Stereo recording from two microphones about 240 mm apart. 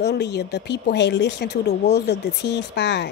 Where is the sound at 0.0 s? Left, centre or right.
Left.